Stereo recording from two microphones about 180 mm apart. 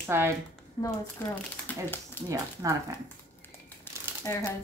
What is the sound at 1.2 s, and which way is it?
Speech, 10° left (ahead or behind).